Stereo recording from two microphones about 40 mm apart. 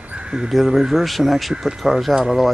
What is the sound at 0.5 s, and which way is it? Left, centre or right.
Speech, centre.